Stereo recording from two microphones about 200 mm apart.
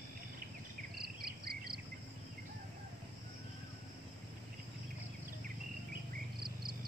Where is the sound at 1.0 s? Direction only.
50° right (ahead or behind).